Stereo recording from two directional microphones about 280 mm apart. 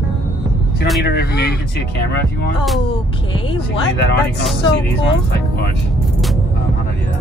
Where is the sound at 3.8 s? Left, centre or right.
Left.